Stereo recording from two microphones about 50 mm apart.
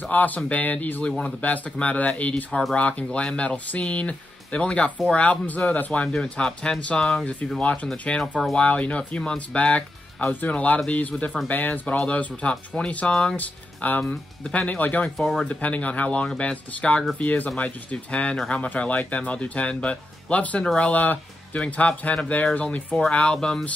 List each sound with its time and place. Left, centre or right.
0.1 s speech: left
6.0 s speech: centre
13.4 s speech: left
15.1 s speech: centre
15.4 s speech: left
20.9 s speech: left; by 23.6 s centre